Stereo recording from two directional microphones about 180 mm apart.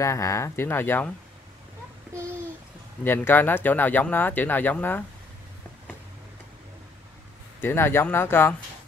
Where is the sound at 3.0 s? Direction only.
10° left (ahead or behind).